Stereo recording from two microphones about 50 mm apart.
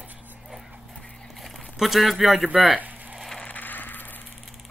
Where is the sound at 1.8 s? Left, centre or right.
Centre.